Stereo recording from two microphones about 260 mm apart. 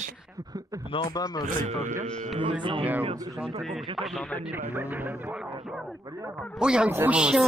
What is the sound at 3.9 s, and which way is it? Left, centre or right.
Speech, centre.